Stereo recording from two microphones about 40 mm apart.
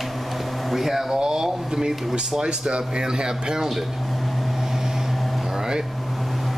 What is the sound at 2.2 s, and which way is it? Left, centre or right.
Speech, right.